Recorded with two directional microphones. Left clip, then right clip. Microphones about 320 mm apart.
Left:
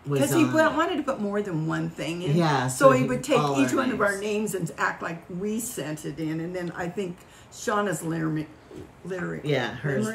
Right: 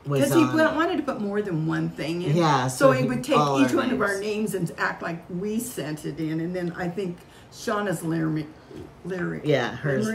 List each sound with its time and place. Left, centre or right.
0.1 s speech: centre
2.3 s speech: centre
2.8 s speech: centre
9.4 s speech: centre